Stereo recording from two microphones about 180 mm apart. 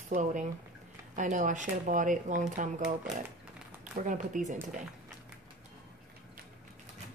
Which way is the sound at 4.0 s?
45° right (ahead or behind).